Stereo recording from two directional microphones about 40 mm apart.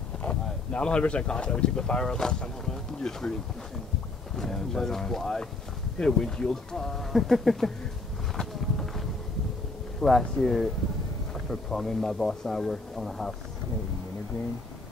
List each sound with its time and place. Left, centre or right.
0.2 s speech: left
4.4 s speech: centre
8.5 s run: centre
9.9 s speech: centre